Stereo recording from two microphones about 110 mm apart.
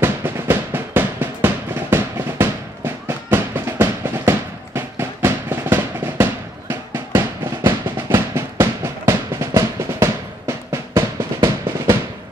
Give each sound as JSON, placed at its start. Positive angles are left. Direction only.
{"t": 0.0, "sound": "drum", "side_deg": -20}